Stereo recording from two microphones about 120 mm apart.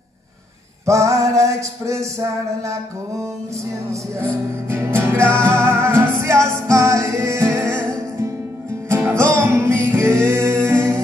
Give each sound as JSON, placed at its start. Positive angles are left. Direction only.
{"t": 0.8, "sound": "music", "side_deg": -25}
{"t": 3.9, "sound": "music", "side_deg": -20}
{"t": 8.8, "sound": "music", "side_deg": -20}
{"t": 9.1, "sound": "music", "side_deg": 5}
{"t": 9.4, "sound": "music", "side_deg": -20}